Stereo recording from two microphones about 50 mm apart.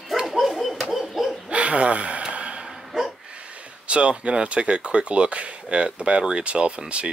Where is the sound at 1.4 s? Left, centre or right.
Right.